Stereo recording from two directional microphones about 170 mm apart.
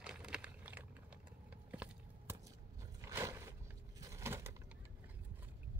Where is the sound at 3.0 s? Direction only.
20° right (ahead or behind).